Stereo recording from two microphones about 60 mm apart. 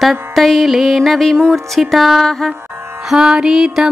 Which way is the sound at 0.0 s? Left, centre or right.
Centre.